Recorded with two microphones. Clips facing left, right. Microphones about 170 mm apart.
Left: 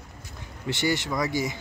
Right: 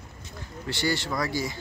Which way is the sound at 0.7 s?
20° left (ahead or behind).